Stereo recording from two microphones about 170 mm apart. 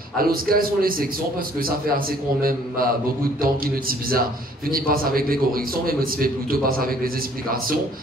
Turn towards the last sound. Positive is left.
turn(degrees=-60)  # may be behind; listen again after turning